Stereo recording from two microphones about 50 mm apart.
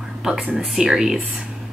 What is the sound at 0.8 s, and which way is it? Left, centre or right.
Speech, centre.